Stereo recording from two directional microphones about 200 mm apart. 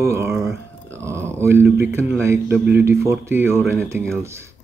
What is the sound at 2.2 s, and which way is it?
Speech, 10° right (ahead or behind).